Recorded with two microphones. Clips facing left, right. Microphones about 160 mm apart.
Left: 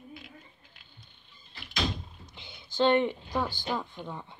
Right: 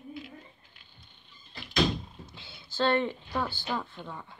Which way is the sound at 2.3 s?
15° left (ahead or behind).